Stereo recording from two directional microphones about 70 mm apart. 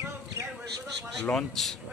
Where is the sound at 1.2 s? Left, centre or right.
Centre.